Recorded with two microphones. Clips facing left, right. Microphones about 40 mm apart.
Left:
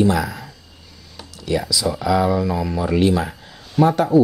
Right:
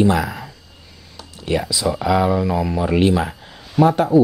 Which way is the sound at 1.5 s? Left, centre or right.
Right.